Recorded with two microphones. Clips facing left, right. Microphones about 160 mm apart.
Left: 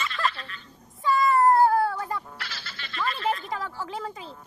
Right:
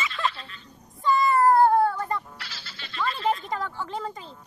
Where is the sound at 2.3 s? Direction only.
55° left (ahead or behind).